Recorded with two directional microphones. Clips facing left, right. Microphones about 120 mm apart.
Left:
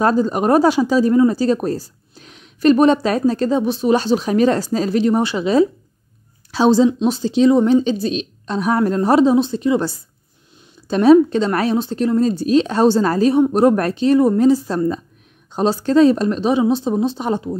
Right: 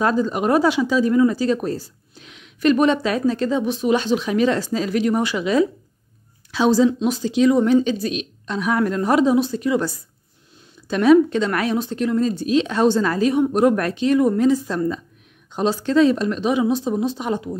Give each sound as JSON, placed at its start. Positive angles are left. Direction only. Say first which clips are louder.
{"t": 0.0, "sound": "a woman's voice", "louder": "left 3 dB", "side_deg": 40}